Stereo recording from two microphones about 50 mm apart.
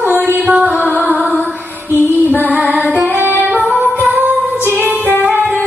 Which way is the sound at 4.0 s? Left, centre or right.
Right.